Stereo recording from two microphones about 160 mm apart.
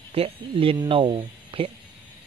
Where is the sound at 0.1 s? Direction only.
35° right (ahead or behind).